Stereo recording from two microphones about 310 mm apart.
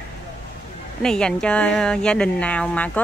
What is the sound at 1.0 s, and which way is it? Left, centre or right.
Speech, centre.